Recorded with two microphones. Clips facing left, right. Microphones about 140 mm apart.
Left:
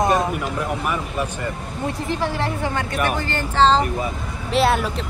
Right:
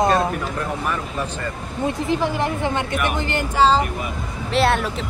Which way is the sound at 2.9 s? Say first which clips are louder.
Left 1 dB; 40° left (ahead or behind).